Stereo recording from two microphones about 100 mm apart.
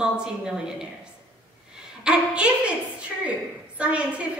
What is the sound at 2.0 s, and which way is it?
Speech, 10° right (ahead or behind).